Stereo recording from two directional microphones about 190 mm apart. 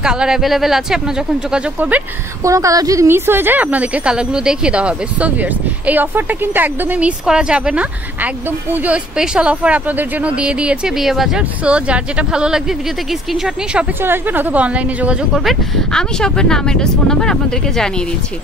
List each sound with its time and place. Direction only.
0.0 s speech: 5° right (ahead or behind)